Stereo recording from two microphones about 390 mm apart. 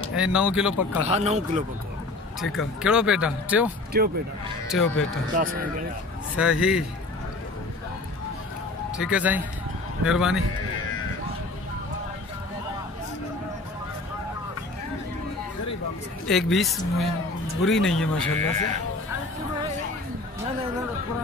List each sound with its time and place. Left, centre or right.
0.1 s speech: centre
1.0 s speech: centre
2.5 s speech: centre
3.9 s speech: right
4.7 s speech: centre
5.4 s speech: centre
6.3 s speech: centre
8.9 s speech: centre
16.3 s speech: centre